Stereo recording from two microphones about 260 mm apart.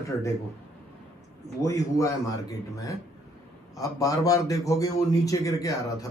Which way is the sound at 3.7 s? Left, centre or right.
Centre.